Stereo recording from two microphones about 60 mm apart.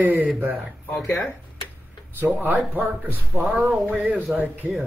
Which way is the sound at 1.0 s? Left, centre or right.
Left.